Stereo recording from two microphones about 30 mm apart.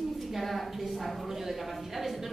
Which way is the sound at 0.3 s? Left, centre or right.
Centre.